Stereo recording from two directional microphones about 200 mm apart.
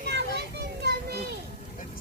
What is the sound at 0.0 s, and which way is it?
Children playing, 55° right (ahead or behind).